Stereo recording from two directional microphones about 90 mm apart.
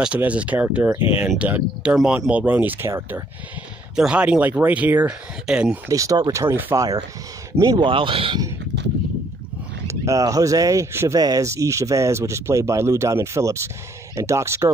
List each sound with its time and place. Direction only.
0.0 s speech: 15° right (ahead or behind)
0.9 s speech: 90° left
1.4 s speech: 15° right (ahead or behind)
3.9 s speech: 10° right (ahead or behind)
5.9 s speech: 40° right (ahead or behind)
6.4 s speech: 25° right (ahead or behind)
7.8 s speech: 70° right (ahead or behind)
9.8 s speech: 40° right (ahead or behind)
11.1 s speech: 45° right (ahead or behind)